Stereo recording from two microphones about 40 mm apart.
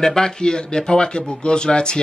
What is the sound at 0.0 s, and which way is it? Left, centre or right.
Speech, centre.